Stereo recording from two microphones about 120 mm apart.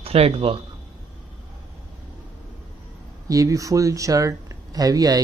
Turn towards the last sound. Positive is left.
turn(degrees=-30)  # may be behind; listen again after turning